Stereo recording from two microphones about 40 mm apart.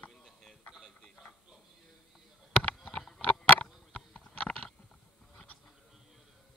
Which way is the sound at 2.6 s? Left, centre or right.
Left.